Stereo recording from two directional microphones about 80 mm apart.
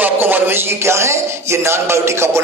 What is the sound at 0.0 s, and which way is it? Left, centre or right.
A man's voice, right.